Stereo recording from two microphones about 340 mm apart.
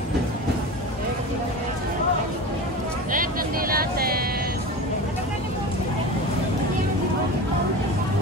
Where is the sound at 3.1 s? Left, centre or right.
Right.